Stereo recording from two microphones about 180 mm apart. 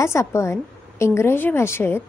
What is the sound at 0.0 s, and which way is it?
A woman's voice, 15° left (ahead or behind).